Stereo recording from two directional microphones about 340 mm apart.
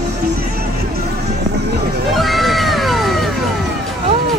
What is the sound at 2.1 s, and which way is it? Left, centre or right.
Music, centre.